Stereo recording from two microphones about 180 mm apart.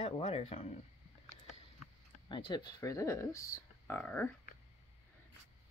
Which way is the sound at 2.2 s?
25° left (ahead or behind).